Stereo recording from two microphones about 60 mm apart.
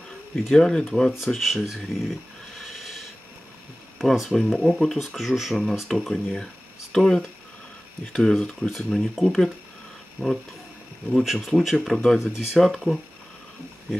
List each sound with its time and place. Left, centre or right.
0.5 s speech: centre
2.0 s dog: centre
4.0 s speech: centre
5.9 s speech: centre
10.2 s speech: left
11.2 s speech: centre
12.2 s speech: centre